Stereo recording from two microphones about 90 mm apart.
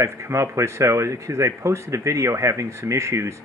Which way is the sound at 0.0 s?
35° right (ahead or behind).